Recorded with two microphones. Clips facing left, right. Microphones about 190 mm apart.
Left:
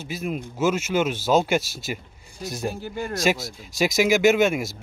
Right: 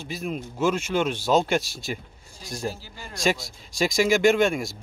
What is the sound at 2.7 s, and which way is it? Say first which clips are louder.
Speech: left 6 dB; 55° left (ahead or behind).